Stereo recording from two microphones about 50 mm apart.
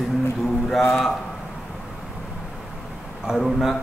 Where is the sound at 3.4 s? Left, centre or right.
Centre.